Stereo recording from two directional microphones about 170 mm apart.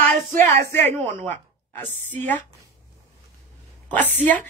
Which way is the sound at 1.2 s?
10° left (ahead or behind).